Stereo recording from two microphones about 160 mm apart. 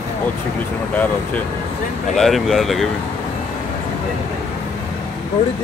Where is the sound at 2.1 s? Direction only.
Centre (ahead or behind).